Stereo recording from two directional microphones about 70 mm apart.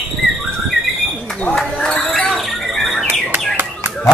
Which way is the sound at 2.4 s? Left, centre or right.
Centre.